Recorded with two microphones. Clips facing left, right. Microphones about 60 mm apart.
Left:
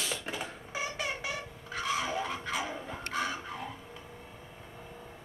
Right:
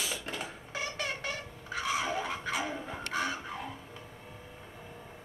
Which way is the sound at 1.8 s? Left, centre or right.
Centre.